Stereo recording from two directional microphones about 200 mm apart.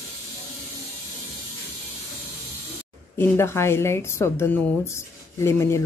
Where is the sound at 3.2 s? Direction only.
10° left (ahead or behind).